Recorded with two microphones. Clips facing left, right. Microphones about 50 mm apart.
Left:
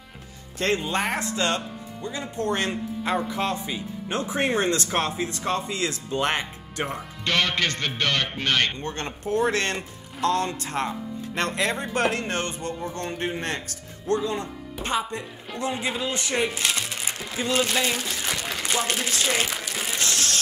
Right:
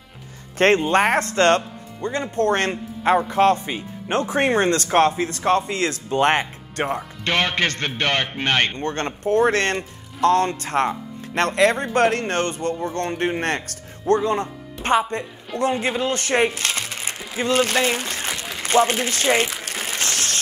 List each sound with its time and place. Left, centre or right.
0.6 s speech: right
2.7 s speech: right
7.2 s a man's voice: right
8.8 s speech: right
16.7 s music: right
17.4 s speech: right
18.4 s a sound: centre
18.7 s a man's voice: right
20.0 s a sound: right